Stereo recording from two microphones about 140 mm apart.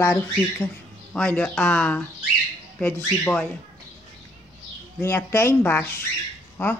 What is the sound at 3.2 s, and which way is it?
Speech, 5° left (ahead or behind).